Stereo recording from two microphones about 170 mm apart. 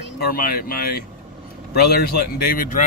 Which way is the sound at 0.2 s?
60° left (ahead or behind).